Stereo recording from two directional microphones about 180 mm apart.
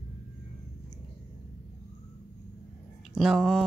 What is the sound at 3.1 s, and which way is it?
Speech, centre (ahead or behind).